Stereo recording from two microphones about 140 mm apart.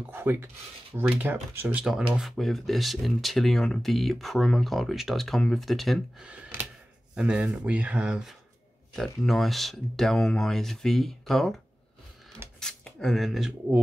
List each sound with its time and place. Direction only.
0.1 s speech: 15° right (ahead or behind)